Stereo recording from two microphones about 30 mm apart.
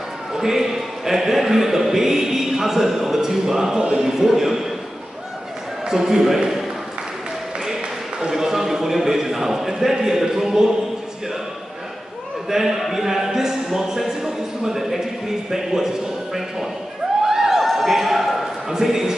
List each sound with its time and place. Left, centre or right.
0.3 s a man's voice: centre
5.9 s a man's voice: centre
8.3 s a man's voice: centre
12.4 s a man's voice: centre
17.2 s a sound: centre
18.7 s a man's voice: centre